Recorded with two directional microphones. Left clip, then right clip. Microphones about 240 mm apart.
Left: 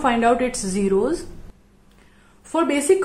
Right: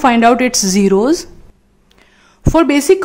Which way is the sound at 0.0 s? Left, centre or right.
Right.